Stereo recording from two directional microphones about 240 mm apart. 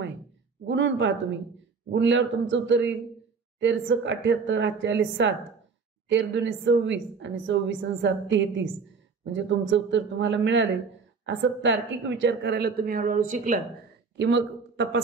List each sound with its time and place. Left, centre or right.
0.7 s a woman's voice: right
14.1 s speech: right